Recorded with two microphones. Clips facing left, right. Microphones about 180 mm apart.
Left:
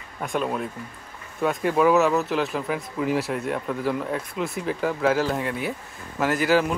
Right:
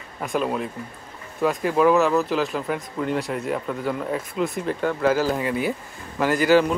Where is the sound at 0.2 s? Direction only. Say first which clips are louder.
Right 2 dB; centre (ahead or behind).